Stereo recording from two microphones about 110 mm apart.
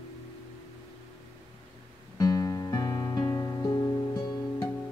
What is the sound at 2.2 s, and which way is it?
Music, 35° left (ahead or behind).